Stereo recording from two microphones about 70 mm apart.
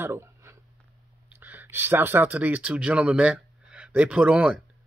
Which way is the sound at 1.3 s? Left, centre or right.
Right.